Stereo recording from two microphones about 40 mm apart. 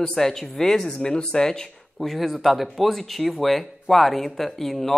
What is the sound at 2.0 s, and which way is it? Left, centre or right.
Speech, centre.